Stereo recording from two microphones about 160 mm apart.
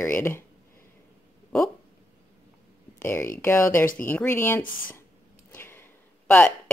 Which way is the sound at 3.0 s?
15° left (ahead or behind).